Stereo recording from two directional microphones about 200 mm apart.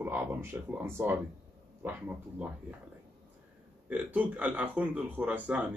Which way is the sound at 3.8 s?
5° right (ahead or behind).